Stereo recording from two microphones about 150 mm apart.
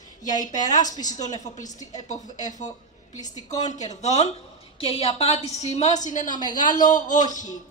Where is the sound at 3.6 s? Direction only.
50° left (ahead or behind).